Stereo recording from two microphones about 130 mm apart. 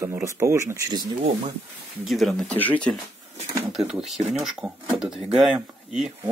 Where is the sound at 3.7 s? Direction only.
5° right (ahead or behind).